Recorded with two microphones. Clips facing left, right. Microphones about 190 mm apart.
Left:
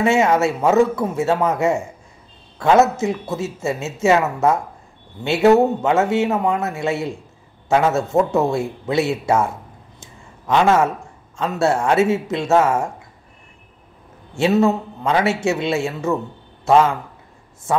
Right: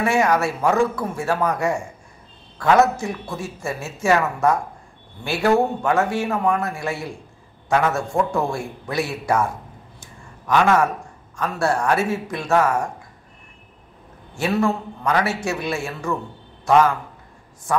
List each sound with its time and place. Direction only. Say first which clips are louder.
0.0 s speech: left 3 dB; 25° left (ahead or behind)
9.9 s a sound: even; 25° left (ahead or behind)
11.3 s speech: left 3 dB; 25° left (ahead or behind)
14.3 s a man's voice: left 5 dB; 25° left (ahead or behind)